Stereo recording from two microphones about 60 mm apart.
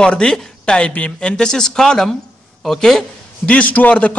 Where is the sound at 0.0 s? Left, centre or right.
Centre.